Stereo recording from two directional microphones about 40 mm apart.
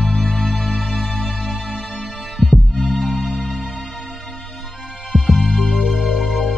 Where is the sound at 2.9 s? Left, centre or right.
Centre.